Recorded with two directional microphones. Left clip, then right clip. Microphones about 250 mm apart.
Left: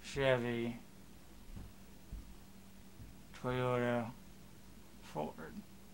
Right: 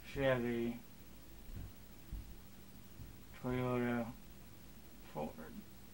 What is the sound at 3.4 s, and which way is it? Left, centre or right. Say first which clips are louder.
Speech: left 3 dB; left.